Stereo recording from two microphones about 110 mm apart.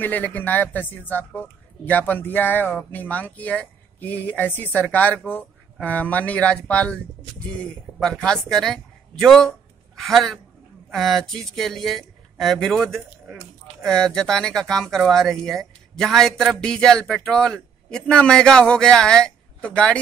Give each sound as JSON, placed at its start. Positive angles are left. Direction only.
{"t": 0.0, "sound": "speech", "side_deg": 15}